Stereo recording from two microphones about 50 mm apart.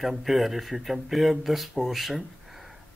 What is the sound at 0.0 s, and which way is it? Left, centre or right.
Speech, centre.